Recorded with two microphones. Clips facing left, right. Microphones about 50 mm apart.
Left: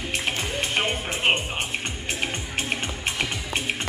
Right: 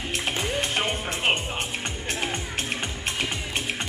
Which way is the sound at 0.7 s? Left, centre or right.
Left.